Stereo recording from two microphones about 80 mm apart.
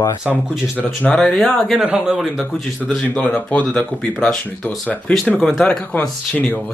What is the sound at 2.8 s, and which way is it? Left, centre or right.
Speech, centre.